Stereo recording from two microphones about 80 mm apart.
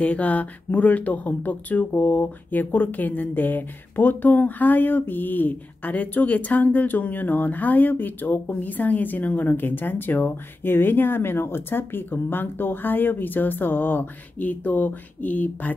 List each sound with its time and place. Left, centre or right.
0.0 s speech: centre